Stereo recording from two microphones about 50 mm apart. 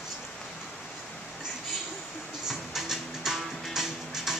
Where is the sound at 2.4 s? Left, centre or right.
Centre.